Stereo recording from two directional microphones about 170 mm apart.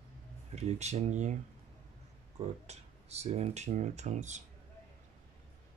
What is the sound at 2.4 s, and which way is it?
Speech, 40° right (ahead or behind).